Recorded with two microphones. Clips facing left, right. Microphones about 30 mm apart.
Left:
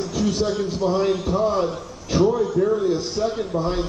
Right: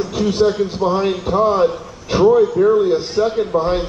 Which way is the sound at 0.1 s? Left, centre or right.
Right.